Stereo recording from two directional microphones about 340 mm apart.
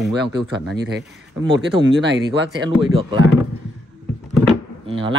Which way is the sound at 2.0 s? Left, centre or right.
Right.